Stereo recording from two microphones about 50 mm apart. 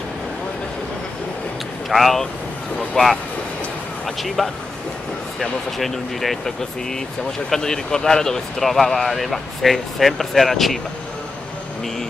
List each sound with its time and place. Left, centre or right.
1.9 s speech: centre